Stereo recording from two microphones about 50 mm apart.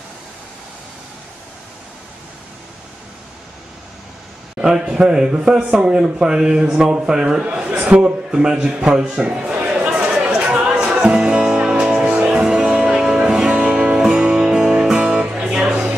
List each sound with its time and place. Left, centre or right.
4.6 s a man's voice: centre
7.8 s a sound: right
8.3 s a man's voice: centre
10.1 s music: right